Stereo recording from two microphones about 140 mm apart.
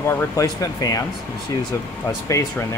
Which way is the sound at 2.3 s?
25° left (ahead or behind).